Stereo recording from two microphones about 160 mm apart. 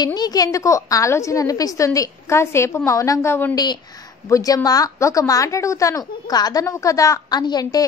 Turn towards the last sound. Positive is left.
turn(degrees=25)  # may be behind; listen again after turning